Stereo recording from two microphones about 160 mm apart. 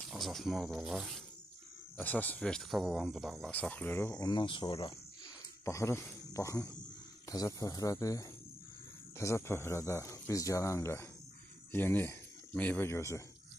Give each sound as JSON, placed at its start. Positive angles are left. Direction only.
{"t": 0.1, "sound": "speech", "side_deg": 0}
{"t": 2.0, "sound": "speech", "side_deg": 10}
{"t": 5.7, "sound": "speech", "side_deg": 20}